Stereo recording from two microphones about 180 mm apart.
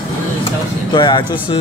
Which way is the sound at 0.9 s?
25° left (ahead or behind).